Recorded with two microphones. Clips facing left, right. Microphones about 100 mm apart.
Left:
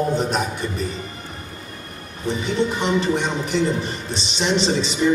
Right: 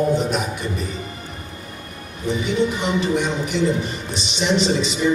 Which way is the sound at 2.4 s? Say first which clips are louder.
Right 1 dB; 35° left (ahead or behind).